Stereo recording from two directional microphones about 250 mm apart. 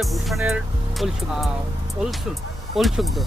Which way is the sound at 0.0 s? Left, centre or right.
Centre.